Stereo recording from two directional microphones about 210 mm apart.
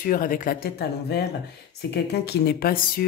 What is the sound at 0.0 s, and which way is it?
Speech, 45° left (ahead or behind).